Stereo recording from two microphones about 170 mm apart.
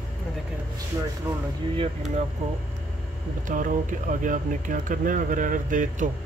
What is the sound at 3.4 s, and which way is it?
Speech, 50° right (ahead or behind).